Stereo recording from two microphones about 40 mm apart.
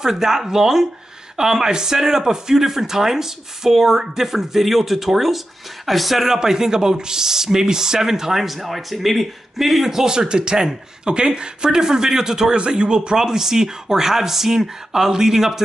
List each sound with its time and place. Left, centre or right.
0.0 s speech: centre
12.5 s speech: right; by 15.6 s centre